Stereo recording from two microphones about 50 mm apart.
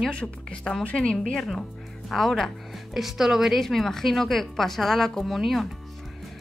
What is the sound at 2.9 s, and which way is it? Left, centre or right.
Speech, centre.